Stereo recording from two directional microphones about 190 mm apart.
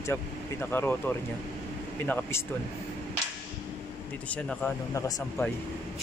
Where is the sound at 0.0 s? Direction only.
10° left (ahead or behind).